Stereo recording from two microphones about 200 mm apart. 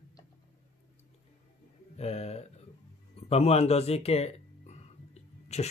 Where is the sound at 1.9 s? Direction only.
30° left (ahead or behind).